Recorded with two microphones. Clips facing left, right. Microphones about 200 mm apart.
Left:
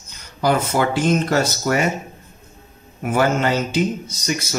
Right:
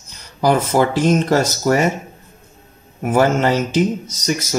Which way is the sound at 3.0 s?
45° right (ahead or behind).